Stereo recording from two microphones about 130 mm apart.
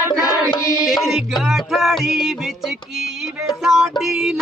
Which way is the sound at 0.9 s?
Centre (ahead or behind).